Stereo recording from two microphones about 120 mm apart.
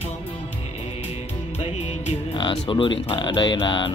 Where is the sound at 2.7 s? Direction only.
45° left (ahead or behind).